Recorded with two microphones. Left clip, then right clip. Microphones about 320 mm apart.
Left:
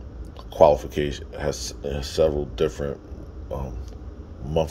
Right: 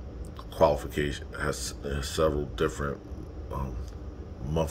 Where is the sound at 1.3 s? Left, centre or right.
Left.